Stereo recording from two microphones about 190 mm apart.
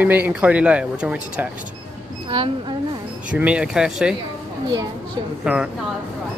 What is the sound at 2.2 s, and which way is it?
Speech, 25° right (ahead or behind).